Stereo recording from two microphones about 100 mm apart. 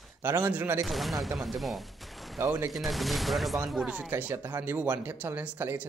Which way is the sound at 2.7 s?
Centre (ahead or behind).